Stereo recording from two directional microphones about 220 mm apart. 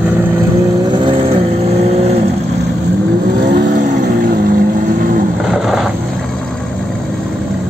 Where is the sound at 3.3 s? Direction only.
40° right (ahead or behind).